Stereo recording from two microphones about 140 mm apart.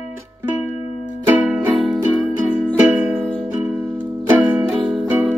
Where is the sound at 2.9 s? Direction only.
15° right (ahead or behind).